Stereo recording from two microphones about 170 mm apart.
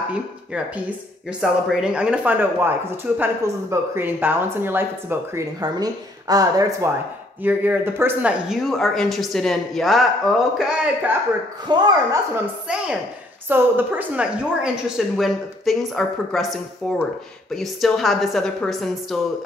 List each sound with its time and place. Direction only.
0.1 s speech: 10° right (ahead or behind)
11.6 s speech: 25° right (ahead or behind)
13.5 s speech: 10° right (ahead or behind)